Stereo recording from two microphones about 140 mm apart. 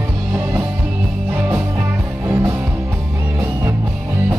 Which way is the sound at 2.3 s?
15° right (ahead or behind).